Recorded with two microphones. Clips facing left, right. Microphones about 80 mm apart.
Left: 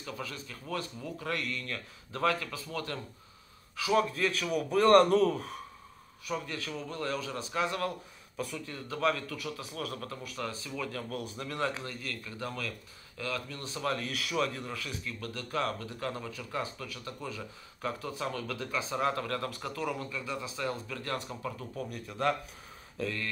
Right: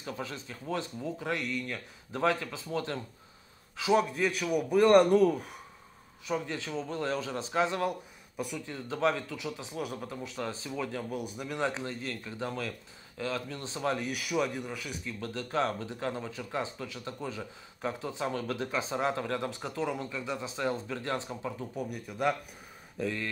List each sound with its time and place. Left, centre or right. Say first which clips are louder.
0.0 s a man's voice: right 2 dB; right; by 5.6 s centre
6.2 s a man's voice: right 3 dB; right
15.1 s a man's voice: right 4 dB; right; by 22.3 s centre
22.9 s speech: right 2 dB; right